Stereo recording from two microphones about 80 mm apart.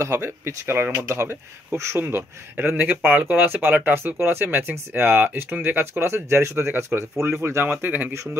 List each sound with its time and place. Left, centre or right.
0.0 s speech: right